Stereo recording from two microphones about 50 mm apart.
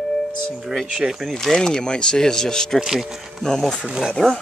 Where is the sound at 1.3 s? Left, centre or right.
Centre.